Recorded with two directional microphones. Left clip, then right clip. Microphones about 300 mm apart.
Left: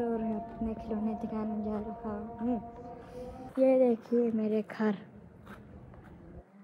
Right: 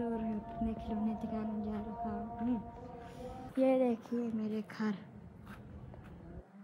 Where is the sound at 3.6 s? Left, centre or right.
Right.